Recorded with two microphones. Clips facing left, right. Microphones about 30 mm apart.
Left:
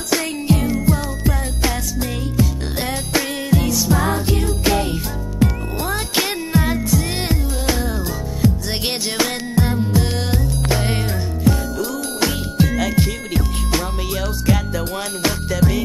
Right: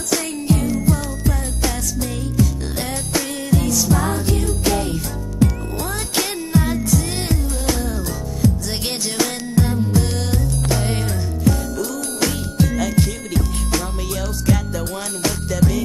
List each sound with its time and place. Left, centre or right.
0.1 s music: left
15.2 s music: left